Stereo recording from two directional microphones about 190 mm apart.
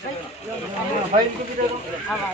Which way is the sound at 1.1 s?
35° right (ahead or behind).